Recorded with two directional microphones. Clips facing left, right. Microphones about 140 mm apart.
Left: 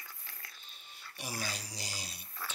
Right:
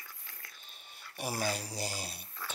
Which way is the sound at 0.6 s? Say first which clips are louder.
Right 1 dB; 50° right (ahead or behind).